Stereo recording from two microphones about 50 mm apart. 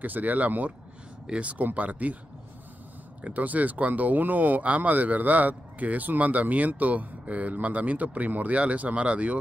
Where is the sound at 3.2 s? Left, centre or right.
Right.